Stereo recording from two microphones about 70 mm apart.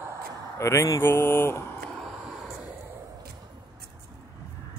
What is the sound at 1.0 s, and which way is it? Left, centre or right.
Speech, left.